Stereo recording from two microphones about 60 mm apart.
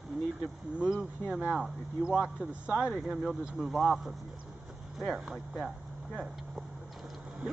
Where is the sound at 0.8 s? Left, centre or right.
Centre.